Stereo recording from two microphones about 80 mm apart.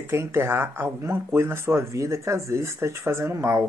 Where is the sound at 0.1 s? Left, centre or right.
Right.